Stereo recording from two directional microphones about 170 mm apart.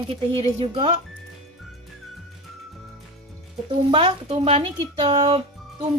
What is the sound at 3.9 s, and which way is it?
Speech, 35° right (ahead or behind).